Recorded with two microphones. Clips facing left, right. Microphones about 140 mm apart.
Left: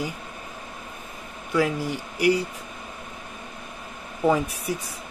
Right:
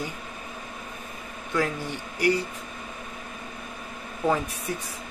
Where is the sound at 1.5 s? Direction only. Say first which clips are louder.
Left 4 dB; 10° left (ahead or behind).